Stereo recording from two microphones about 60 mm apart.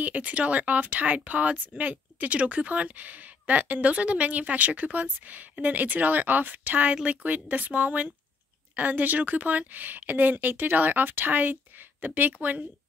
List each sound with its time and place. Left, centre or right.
0.0 s a woman's voice: right